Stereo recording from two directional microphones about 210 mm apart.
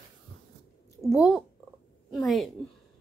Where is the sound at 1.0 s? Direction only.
Centre (ahead or behind).